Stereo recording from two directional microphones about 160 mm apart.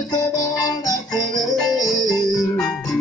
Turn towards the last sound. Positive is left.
turn(degrees=5)  # may be behind; listen again after turning